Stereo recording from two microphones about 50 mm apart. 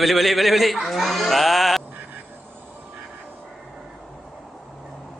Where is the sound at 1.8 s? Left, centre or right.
Right.